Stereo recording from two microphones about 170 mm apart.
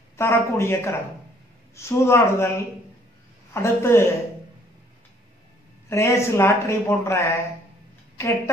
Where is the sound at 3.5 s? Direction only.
15° left (ahead or behind).